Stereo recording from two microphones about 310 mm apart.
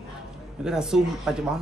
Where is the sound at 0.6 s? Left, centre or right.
Centre.